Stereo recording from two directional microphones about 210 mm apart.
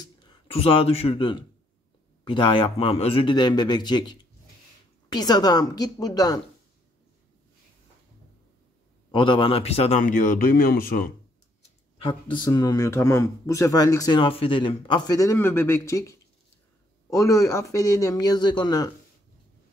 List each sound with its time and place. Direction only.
0.0 s speech: 25° left (ahead or behind)
9.1 s speech: 25° left (ahead or behind); by 11.1 s 45° left (ahead or behind)
12.1 s speech: 20° left (ahead or behind)